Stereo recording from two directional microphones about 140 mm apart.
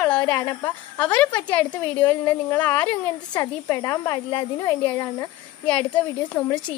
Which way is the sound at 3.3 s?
20° left (ahead or behind).